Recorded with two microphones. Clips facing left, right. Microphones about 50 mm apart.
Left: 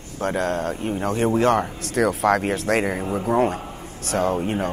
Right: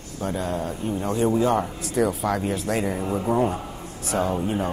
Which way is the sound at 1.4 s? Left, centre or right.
Left.